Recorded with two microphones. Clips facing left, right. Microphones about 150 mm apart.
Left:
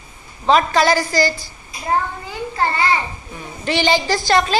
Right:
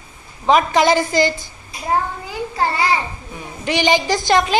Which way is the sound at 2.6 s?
10° right (ahead or behind).